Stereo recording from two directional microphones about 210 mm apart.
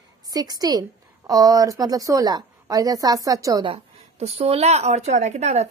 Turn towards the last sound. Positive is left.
turn(degrees=-30)  # may be behind; listen again after turning